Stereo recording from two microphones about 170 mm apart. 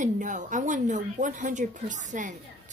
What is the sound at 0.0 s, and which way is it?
Speech, 45° right (ahead or behind).